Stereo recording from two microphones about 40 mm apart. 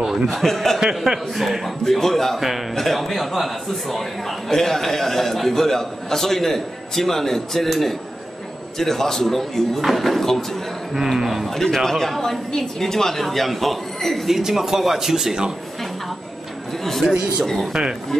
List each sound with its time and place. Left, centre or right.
0.3 s speech: centre
0.7 s a man's voice: centre
2.0 s a man's voice: centre
8.7 s speech: centre
10.9 s a man's voice: centre
11.4 s a man's voice: centre
14.3 s a man's voice: centre
17.0 s a man's voice: right